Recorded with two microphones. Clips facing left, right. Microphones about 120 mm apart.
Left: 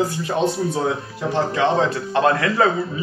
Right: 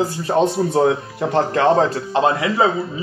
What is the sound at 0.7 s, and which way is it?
Speech, 55° right (ahead or behind).